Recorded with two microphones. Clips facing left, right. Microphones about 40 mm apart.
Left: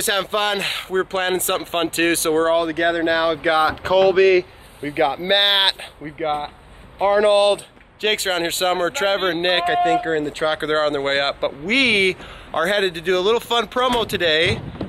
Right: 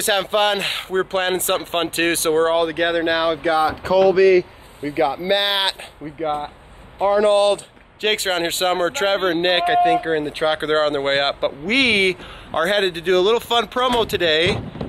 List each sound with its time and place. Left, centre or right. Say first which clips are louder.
0.0 s speech: right 2 dB; centre
2.9 s speech: even; right
3.4 s speech: left 1 dB; left
7.2 s speech: even; centre
8.0 s speech: even; centre
10.1 s speech: even; centre
10.6 s speech: right 1 dB; centre